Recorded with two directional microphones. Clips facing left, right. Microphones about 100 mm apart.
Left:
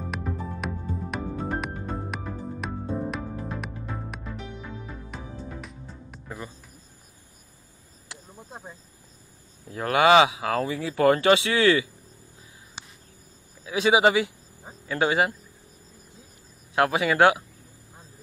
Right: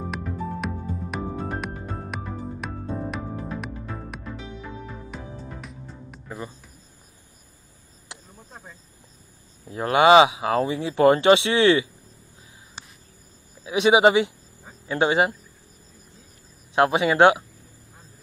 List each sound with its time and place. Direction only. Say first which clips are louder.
1.1 s music: even; centre (ahead or behind)
8.1 s cricket: right 1 dB; 20° right (ahead or behind)
9.7 s speech: right 3 dB; 25° right (ahead or behind)
13.7 s speech: right 3 dB; 20° right (ahead or behind)
16.7 s speech: right 3 dB; 25° right (ahead or behind)